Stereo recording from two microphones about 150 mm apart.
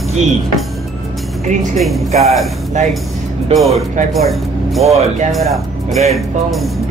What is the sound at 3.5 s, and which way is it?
Speech, centre (ahead or behind).